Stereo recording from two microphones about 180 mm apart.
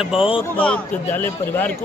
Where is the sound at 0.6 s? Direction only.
10° left (ahead or behind).